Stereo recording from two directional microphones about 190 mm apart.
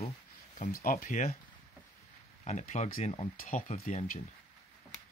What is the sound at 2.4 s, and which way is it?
Speech, 35° left (ahead or behind).